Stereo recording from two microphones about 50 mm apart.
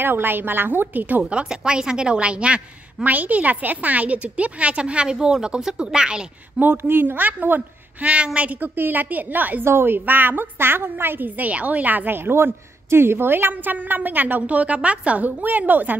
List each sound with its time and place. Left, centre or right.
0.0 s a woman's voice: right
1.3 s a woman's voice: centre
3.1 s a woman's voice: right; by 6.2 s centre
6.6 s a woman's voice: right
8.0 s a woman's voice: right
9.7 s a woman's voice: right
12.2 s a woman's voice: right